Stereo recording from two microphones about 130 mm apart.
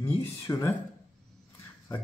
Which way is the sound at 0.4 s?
20° left (ahead or behind).